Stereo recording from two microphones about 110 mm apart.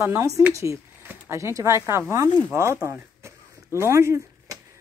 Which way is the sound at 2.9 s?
25° right (ahead or behind).